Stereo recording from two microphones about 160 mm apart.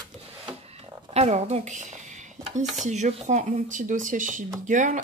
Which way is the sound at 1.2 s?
45° right (ahead or behind).